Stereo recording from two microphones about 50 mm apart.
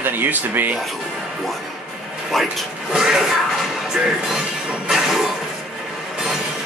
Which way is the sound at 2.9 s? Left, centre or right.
Centre.